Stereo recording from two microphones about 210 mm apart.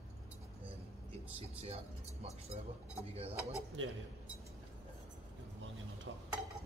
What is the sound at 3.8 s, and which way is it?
Speech, 65° right (ahead or behind).